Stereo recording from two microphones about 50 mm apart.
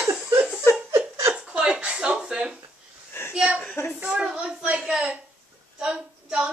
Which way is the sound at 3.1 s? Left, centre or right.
Left.